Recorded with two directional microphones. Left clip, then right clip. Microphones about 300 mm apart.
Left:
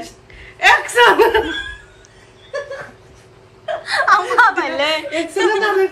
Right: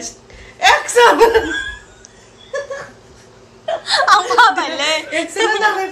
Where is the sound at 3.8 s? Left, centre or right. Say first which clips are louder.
Right 2 dB; centre.